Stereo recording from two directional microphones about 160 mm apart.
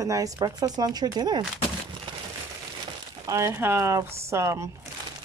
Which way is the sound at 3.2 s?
20° right (ahead or behind).